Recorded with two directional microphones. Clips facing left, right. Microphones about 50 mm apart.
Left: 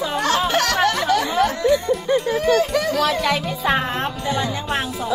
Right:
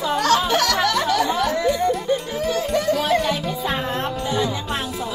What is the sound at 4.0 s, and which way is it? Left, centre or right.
Music, left.